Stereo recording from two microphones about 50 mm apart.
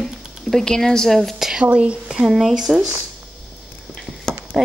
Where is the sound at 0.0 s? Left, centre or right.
Centre.